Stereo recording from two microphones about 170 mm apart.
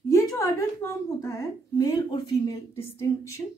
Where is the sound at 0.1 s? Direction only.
20° left (ahead or behind).